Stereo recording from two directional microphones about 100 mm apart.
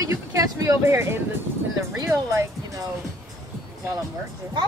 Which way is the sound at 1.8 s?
30° right (ahead or behind).